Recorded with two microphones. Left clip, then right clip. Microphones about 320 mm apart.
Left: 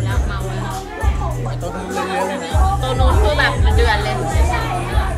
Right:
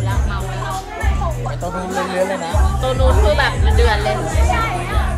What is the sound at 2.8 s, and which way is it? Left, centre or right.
Speech, centre.